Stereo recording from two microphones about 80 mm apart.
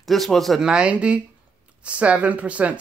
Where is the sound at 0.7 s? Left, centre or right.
Centre.